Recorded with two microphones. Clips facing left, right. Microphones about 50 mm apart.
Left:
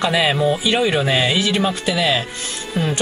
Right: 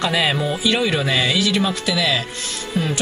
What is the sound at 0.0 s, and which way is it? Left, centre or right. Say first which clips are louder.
Speech: left 3 dB; centre.